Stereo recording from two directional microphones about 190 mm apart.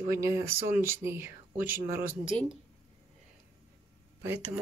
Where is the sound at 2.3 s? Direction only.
5° left (ahead or behind).